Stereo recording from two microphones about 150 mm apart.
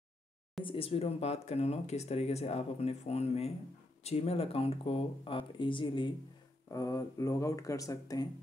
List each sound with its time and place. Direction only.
0.7 s speech: 40° left (ahead or behind); by 8.3 s 25° left (ahead or behind)